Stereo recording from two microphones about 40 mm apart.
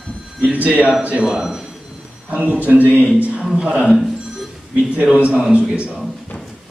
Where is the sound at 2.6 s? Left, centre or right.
Right.